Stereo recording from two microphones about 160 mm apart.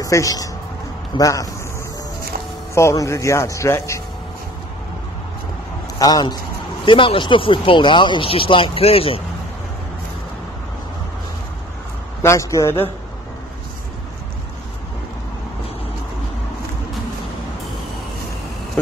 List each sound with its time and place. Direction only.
0.0 s speech: 20° left (ahead or behind)
2.7 s speech: 20° left (ahead or behind)
5.9 s speech: 25° left (ahead or behind)
12.2 s a man's voice: 20° left (ahead or behind)